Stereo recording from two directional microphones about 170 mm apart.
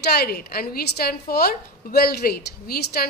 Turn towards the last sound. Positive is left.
turn(degrees=65)  # may be behind; listen again after turning